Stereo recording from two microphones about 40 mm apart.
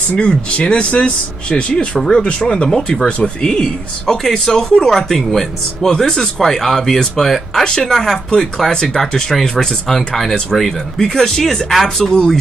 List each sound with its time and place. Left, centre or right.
0.2 s speech: left